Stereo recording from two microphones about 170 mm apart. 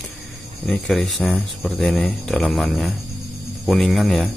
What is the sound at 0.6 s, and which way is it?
Speech, 5° left (ahead or behind).